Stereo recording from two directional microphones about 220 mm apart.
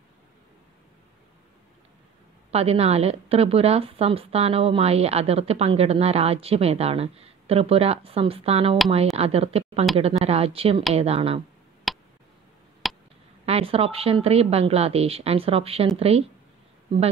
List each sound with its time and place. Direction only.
2.5 s a woman's voice: 25° right (ahead or behind)
11.9 s a sound: centre (ahead or behind)
13.5 s a woman's voice: 25° right (ahead or behind)